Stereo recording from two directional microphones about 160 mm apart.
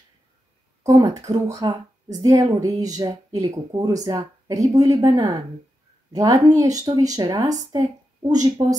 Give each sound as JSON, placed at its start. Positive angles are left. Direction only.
{"t": 0.8, "sound": "speech", "side_deg": -25}